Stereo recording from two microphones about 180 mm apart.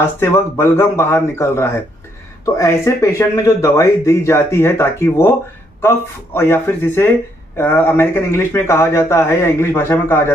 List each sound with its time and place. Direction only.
0.2 s speech: 15° left (ahead or behind)